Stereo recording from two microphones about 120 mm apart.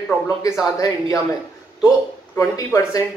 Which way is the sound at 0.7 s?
30° left (ahead or behind).